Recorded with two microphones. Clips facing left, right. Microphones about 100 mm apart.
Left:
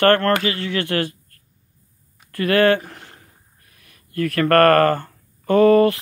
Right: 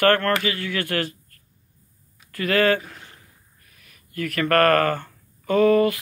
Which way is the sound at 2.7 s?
45° left (ahead or behind).